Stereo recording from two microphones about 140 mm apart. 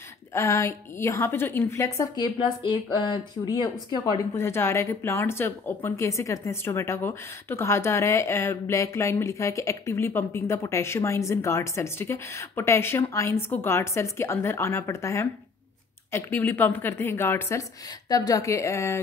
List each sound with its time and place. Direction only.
0.3 s a woman's voice: 20° left (ahead or behind)